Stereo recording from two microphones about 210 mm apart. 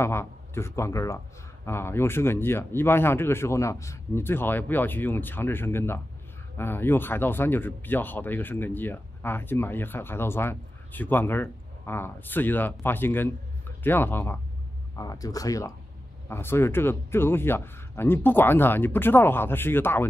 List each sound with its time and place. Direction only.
0.0 s speech: 10° left (ahead or behind)